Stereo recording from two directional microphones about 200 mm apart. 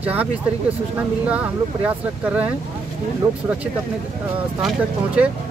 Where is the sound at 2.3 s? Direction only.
5° right (ahead or behind).